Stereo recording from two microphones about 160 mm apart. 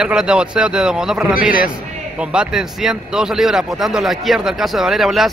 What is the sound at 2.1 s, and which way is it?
A man's voice, 5° right (ahead or behind).